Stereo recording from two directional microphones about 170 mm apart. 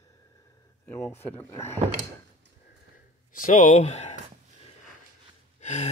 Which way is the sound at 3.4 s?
50° left (ahead or behind).